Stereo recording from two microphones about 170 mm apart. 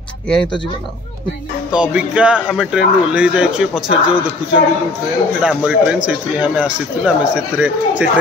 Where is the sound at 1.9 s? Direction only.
5° right (ahead or behind).